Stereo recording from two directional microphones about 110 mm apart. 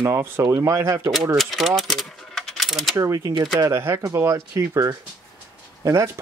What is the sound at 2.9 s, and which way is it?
Speech, 25° right (ahead or behind).